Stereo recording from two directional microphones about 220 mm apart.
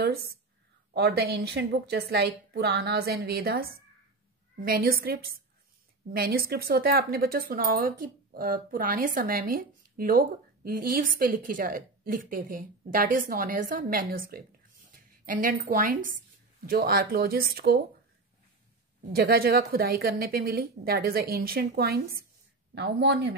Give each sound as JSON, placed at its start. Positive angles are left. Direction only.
{"t": 0.0, "sound": "a woman's voice", "side_deg": -45}
{"t": 19.1, "sound": "speech", "side_deg": -45}